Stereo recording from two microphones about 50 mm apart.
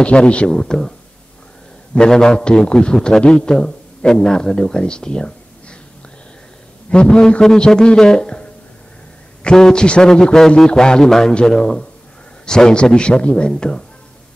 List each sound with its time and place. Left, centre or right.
0.0 s a man's voice: left
2.0 s a man's voice: centre
6.9 s a man's voice: centre